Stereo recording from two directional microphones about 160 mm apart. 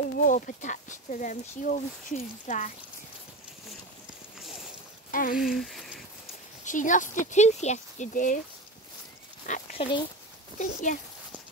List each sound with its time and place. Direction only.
0.2 s speech: 55° left (ahead or behind)
4.4 s a sound: centre (ahead or behind)
5.1 s speech: 60° left (ahead or behind)
5.4 s speech: centre (ahead or behind)
6.6 s speech: 55° left (ahead or behind)
9.5 s speech: 50° left (ahead or behind)
9.8 s speech: 30° left (ahead or behind)
10.6 s speech: 50° left (ahead or behind)